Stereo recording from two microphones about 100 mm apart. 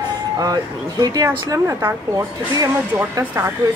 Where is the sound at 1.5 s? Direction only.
25° right (ahead or behind).